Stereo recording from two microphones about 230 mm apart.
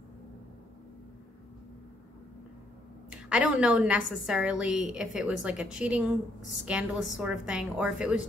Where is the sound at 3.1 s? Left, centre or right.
Centre.